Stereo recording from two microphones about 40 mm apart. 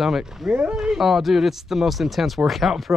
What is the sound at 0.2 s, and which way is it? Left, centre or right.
Speech, centre.